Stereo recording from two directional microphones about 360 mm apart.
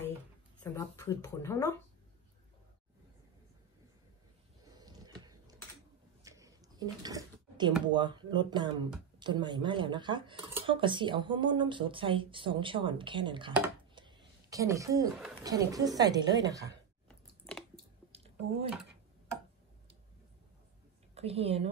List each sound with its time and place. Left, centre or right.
0.7 s speech: centre
4.7 s a sound: centre
7.8 s speech: centre
17.1 s chewing: centre
18.1 s a sound: centre
21.1 s a woman's voice: centre